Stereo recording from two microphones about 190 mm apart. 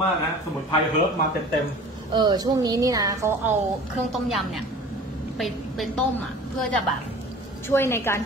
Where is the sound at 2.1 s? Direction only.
25° right (ahead or behind).